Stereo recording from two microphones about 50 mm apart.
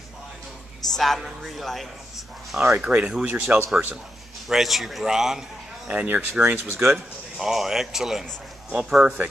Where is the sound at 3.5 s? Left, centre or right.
Right.